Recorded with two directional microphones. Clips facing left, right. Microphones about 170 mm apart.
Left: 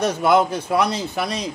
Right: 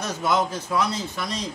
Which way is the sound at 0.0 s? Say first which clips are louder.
Left 7 dB; 60° left (ahead or behind).